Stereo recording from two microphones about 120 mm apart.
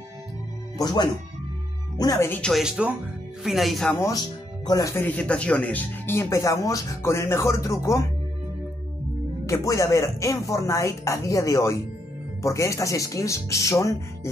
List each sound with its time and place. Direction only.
0.7 s speech: 35° left (ahead or behind)
2.1 s speech: 20° left (ahead or behind)
2.4 s speech: centre (ahead or behind)
4.1 s speech: 35° left (ahead or behind)
4.9 s speech: 15° left (ahead or behind)
9.5 s speech: 25° left (ahead or behind)